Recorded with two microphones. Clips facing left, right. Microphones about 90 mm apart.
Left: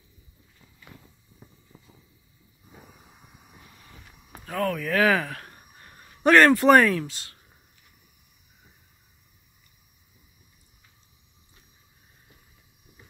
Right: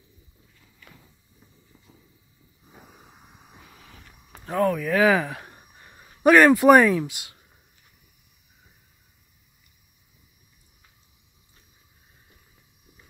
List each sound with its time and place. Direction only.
2.7 s vehicle: 20° right (ahead or behind)
4.5 s speech: 20° right (ahead or behind)